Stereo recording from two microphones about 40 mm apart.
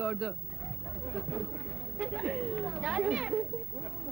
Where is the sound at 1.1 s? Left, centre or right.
Centre.